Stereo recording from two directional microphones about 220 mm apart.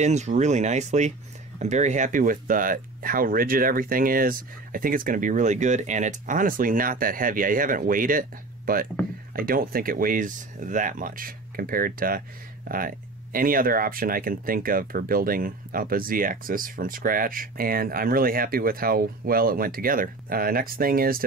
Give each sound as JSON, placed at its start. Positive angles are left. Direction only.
{"t": 0.0, "sound": "speech", "side_deg": -30}